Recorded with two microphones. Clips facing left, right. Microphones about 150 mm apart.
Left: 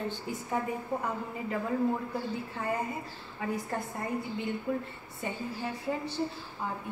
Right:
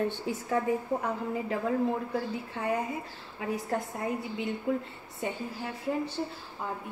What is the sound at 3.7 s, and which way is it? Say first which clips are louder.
Speech: right 2 dB; 90° right.